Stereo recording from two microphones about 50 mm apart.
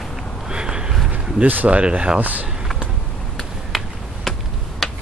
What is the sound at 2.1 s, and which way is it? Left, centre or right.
Speech, right.